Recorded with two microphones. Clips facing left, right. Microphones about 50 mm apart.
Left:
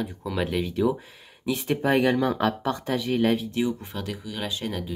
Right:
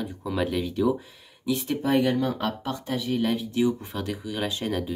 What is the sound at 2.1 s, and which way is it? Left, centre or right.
Speech, left.